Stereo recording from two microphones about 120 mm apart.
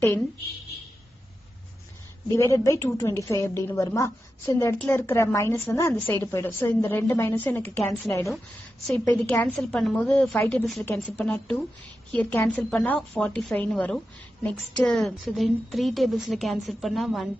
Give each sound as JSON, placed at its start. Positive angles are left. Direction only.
{"t": 2.2, "sound": "a woman's voice", "side_deg": 25}
{"t": 8.8, "sound": "a woman's voice", "side_deg": 10}
{"t": 9.6, "sound": "a woman's voice", "side_deg": 5}